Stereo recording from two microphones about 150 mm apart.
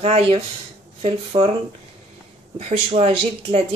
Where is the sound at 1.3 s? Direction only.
25° right (ahead or behind).